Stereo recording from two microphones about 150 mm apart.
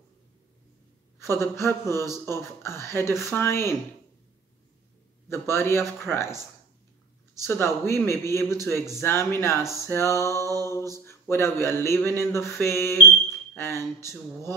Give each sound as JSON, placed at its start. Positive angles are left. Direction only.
{"t": 1.2, "sound": "speech", "side_deg": 15}
{"t": 5.3, "sound": "speech", "side_deg": 15}
{"t": 7.4, "sound": "speech", "side_deg": 15}
{"t": 10.6, "sound": "mantra", "side_deg": 20}
{"t": 11.1, "sound": "a man's voice", "side_deg": 15}